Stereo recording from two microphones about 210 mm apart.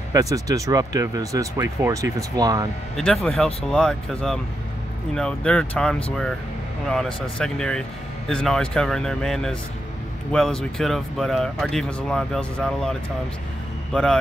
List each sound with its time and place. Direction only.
0.1 s speech: 15° right (ahead or behind)
3.0 s speech: centre (ahead or behind)